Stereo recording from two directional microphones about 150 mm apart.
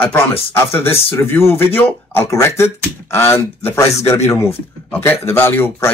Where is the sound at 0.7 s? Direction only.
15° left (ahead or behind).